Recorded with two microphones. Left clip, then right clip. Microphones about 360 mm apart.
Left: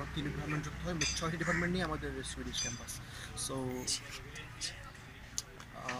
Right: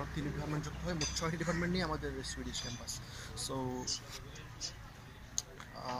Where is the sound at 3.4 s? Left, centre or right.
Centre.